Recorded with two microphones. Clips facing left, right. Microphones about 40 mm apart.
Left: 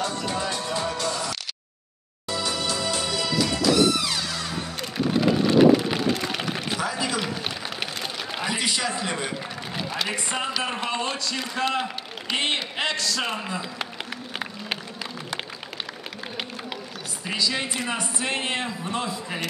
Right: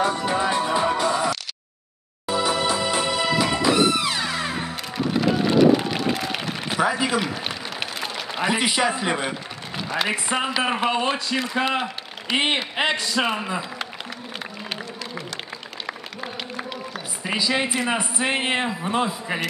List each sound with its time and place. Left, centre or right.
0.0 s music: right
5.1 s run: centre
6.1 s a sound: centre
6.8 s speech: right
7.2 s a sound: centre
8.4 s a man's voice: right
17.3 s speech: centre